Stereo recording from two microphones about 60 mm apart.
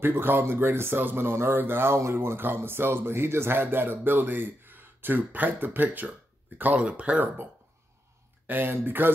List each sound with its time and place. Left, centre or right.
0.0 s speech: right
2.0 s speech: right
8.5 s speech: right